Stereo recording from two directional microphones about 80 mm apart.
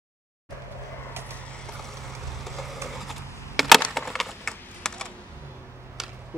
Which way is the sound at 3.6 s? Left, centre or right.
Centre.